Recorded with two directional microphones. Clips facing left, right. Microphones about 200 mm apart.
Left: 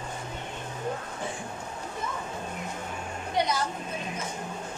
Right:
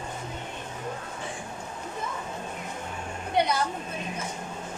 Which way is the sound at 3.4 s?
60° right (ahead or behind).